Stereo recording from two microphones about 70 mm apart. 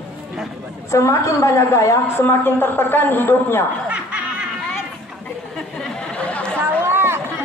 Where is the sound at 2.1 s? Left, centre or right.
Left.